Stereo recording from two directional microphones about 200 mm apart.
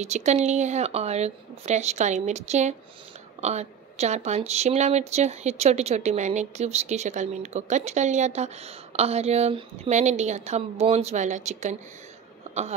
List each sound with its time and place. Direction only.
0.0 s speech: 35° right (ahead or behind)